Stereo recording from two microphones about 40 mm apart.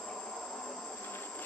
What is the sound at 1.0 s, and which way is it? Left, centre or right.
Insect, left.